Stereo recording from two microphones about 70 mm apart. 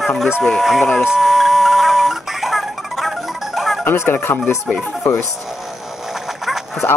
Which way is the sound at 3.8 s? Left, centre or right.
Left.